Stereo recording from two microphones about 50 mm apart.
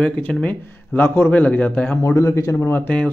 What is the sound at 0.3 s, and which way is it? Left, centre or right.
Speech, left.